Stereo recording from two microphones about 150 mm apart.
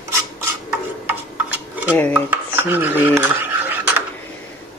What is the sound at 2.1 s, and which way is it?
Dishes, 10° right (ahead or behind).